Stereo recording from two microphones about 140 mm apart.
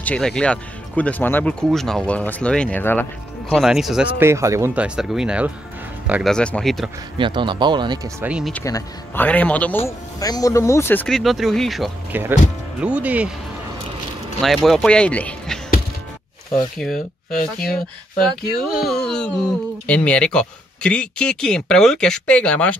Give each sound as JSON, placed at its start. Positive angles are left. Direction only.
{"t": 0.0, "sound": "speech", "side_deg": 5}
{"t": 3.4, "sound": "speech", "side_deg": -5}
{"t": 4.2, "sound": "speech", "side_deg": -20}
{"t": 4.8, "sound": "speech", "side_deg": -5}
{"t": 6.2, "sound": "speech", "side_deg": 5}
{"t": 7.2, "sound": "speech", "side_deg": -35}
{"t": 8.2, "sound": "speech", "side_deg": -5}
{"t": 8.6, "sound": "speech", "side_deg": 25}
{"t": 9.2, "sound": "speech", "side_deg": 10}
{"t": 11.1, "sound": "speech", "side_deg": 0}
{"t": 12.1, "sound": "speech", "side_deg": -15}
{"t": 14.4, "sound": "speech", "side_deg": 0}
{"t": 16.7, "sound": "speech", "side_deg": 0}